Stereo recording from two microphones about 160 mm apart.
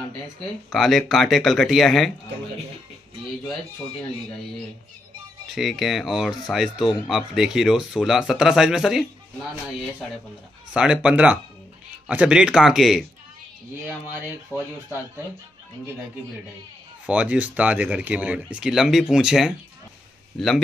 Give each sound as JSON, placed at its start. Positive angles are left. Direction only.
{"t": 0.7, "sound": "speech", "side_deg": 0}
{"t": 5.5, "sound": "speech", "side_deg": 0}
{"t": 14.5, "sound": "speech", "side_deg": 15}
{"t": 17.0, "sound": "speech", "side_deg": -10}